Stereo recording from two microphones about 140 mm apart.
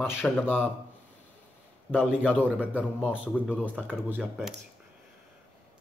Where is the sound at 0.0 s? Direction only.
15° left (ahead or behind).